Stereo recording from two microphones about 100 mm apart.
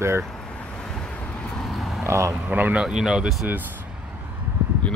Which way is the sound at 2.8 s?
5° right (ahead or behind).